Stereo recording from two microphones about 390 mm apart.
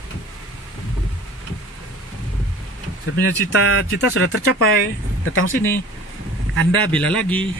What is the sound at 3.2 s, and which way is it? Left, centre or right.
Speech, left.